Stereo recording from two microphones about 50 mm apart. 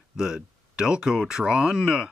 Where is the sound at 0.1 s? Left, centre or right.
Centre.